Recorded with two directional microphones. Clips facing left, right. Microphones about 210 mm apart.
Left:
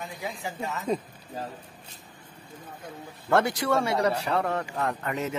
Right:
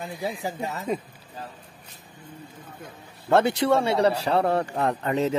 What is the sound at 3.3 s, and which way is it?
A man's voice, 25° right (ahead or behind).